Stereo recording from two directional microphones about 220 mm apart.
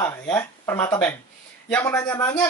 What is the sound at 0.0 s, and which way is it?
Speech, 10° left (ahead or behind).